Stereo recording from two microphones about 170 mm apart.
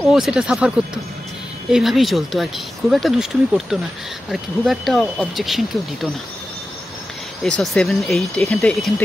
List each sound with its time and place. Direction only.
0.1 s speech: 5° right (ahead or behind)
7.4 s speech: 5° left (ahead or behind)